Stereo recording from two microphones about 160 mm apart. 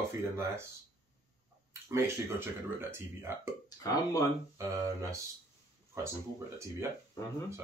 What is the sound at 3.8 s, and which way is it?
Speech, 20° left (ahead or behind).